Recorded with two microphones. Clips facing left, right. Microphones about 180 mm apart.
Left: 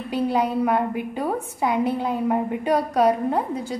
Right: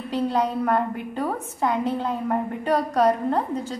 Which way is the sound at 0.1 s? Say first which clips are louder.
Left 1 dB; 10° left (ahead or behind).